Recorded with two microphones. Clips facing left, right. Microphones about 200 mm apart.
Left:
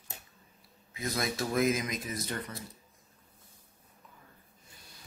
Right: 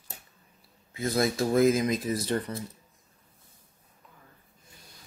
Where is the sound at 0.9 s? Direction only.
30° right (ahead or behind).